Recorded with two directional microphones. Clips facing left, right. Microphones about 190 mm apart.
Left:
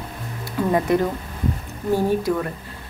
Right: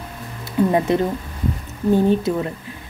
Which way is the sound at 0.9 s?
25° right (ahead or behind).